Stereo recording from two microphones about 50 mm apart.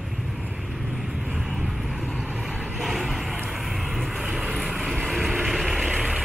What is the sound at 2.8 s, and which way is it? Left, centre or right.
Vehicle, centre.